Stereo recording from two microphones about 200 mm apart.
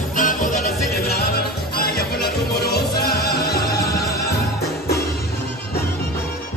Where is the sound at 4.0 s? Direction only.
15° left (ahead or behind).